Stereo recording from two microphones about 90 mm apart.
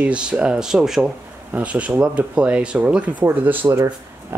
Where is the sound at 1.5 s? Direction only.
15° right (ahead or behind).